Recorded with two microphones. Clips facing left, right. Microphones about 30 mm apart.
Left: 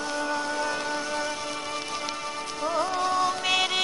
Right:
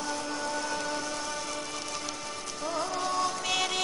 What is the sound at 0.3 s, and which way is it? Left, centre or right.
Music, left.